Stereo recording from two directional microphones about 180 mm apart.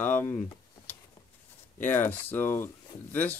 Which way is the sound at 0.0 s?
10° left (ahead or behind).